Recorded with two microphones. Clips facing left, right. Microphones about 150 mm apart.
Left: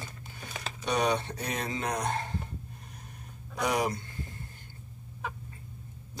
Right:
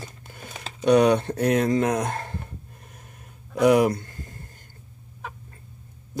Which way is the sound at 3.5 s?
60° right (ahead or behind).